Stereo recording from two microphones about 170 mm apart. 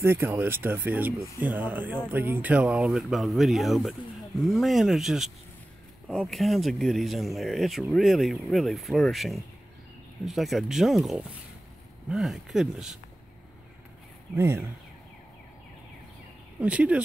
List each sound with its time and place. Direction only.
0.0 s speech: 15° right (ahead or behind)
14.3 s speech: 15° right (ahead or behind)
16.5 s speech: 5° right (ahead or behind)